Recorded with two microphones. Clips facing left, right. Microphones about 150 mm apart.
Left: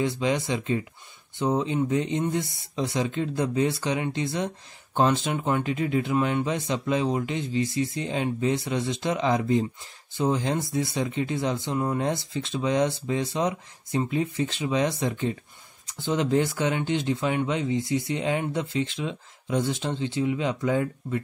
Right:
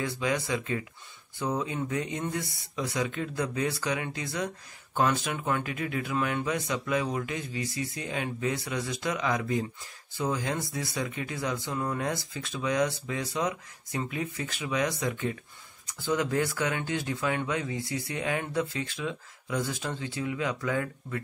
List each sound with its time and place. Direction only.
0.0 s speech: 25° left (ahead or behind)